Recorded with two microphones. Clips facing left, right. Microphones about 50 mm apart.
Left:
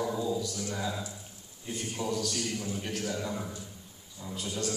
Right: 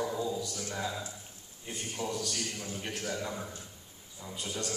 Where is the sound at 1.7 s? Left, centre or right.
Right.